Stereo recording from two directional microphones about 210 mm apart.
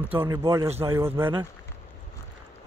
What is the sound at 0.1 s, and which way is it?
Speech, 10° right (ahead or behind).